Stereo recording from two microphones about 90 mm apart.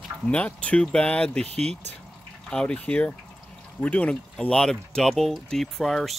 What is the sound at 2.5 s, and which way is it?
Speech, 10° left (ahead or behind).